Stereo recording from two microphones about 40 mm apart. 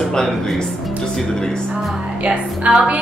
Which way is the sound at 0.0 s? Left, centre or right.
Centre.